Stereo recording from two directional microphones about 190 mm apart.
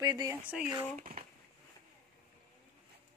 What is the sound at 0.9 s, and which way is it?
Speech, 45° right (ahead or behind).